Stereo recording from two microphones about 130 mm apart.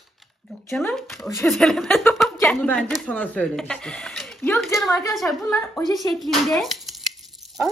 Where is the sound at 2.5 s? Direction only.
15° left (ahead or behind).